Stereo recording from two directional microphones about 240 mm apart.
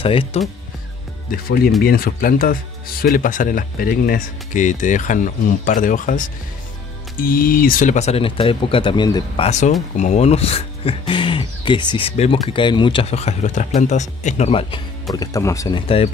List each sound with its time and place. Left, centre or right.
0.0 s speech: left
1.9 s speech: left; by 9.5 s centre
9.5 s speech: left